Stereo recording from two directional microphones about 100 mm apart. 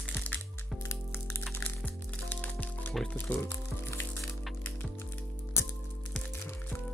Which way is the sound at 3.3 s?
25° left (ahead or behind).